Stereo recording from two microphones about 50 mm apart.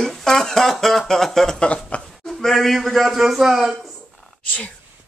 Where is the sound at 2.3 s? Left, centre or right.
Centre.